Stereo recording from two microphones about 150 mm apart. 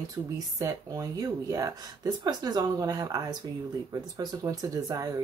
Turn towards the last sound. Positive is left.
turn(degrees=-25)  # may be behind; listen again after turning